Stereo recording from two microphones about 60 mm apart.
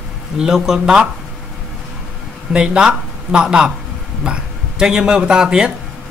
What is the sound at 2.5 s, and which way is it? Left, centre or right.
Speech, centre.